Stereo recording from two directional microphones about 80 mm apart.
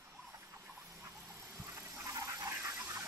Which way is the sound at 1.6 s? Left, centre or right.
Right.